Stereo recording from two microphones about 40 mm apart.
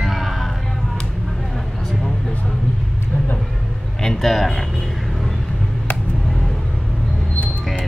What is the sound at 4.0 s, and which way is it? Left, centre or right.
Speech, centre.